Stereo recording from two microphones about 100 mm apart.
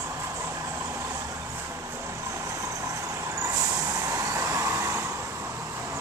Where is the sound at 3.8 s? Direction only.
35° right (ahead or behind).